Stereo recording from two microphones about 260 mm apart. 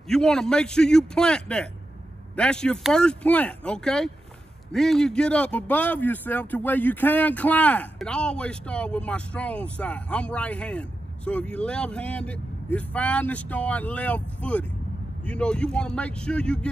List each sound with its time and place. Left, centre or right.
0.1 s a man's voice: centre